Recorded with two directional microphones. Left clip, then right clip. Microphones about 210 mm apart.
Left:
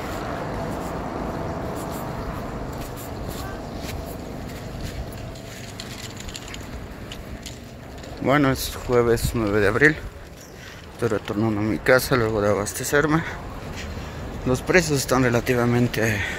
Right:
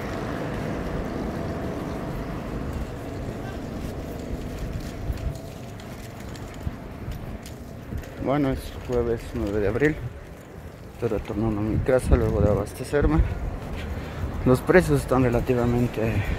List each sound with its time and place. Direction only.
0.0 s vehicle: 50° right (ahead or behind)
8.3 s speech: 10° left (ahead or behind)
9.7 s speech: centre (ahead or behind)
11.0 s speech: 5° left (ahead or behind)
14.5 s speech: 15° right (ahead or behind)
15.0 s speech: 5° right (ahead or behind)